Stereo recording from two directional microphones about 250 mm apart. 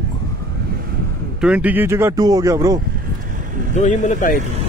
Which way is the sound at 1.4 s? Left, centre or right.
Centre.